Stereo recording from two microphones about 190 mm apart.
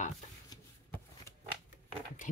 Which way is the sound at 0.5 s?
20° left (ahead or behind).